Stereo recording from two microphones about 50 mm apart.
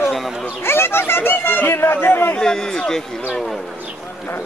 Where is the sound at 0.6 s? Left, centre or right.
Left.